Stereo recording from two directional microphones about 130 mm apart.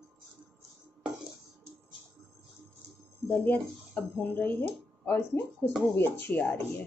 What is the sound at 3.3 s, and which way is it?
Speech, 15° left (ahead or behind).